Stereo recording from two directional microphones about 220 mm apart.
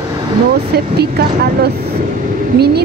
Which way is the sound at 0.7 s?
45° right (ahead or behind).